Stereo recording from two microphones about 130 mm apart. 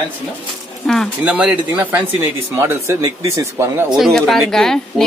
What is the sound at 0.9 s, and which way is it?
Speech, 5° left (ahead or behind).